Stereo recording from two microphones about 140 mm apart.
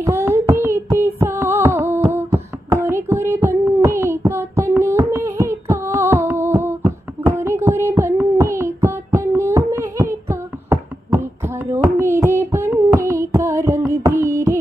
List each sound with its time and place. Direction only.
0.0 s child singing: 20° right (ahead or behind)
11.4 s a sound: 15° right (ahead or behind)
13.1 s music: 20° right (ahead or behind)